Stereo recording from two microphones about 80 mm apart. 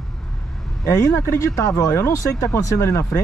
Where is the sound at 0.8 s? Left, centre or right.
Left.